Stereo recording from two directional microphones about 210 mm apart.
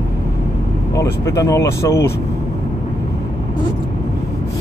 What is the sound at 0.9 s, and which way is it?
Speech, 15° left (ahead or behind).